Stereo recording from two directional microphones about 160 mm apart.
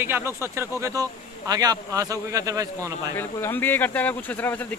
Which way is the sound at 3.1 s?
10° left (ahead or behind).